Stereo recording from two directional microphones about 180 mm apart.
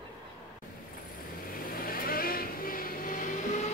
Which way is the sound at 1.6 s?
55° left (ahead or behind).